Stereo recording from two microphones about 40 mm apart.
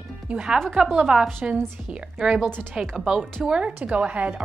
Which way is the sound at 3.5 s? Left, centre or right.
Right.